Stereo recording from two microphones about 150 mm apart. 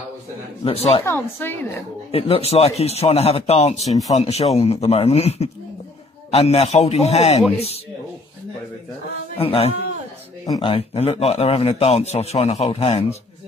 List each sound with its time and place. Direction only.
0.7 s speech: 40° left (ahead or behind)
1.0 s speech: 15° left (ahead or behind)
2.0 s speech: 40° left (ahead or behind)
9.4 s speech: 40° left (ahead or behind)